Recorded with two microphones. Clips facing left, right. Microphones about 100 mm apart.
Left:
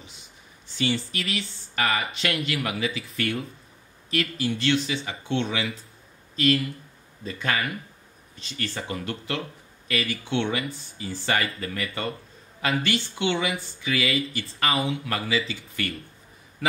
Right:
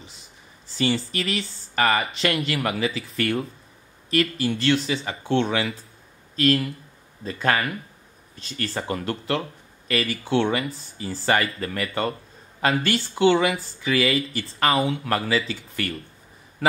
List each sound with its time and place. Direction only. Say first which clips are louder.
0.7 s speech: right 3 dB; 35° right (ahead or behind)